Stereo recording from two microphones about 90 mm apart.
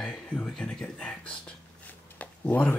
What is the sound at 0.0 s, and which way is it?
Speech, 10° left (ahead or behind).